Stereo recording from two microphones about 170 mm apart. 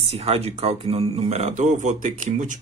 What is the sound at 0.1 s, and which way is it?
Speech, 35° right (ahead or behind).